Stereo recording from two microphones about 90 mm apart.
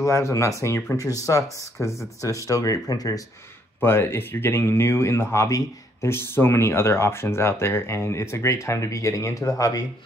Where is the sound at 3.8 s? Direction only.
25° left (ahead or behind).